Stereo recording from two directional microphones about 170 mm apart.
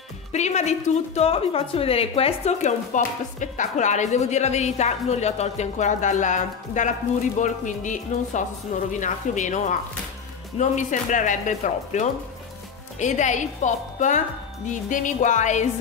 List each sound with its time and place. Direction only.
0.3 s speech: 40° left (ahead or behind)